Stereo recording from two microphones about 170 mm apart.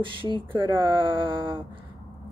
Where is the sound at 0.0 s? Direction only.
30° right (ahead or behind).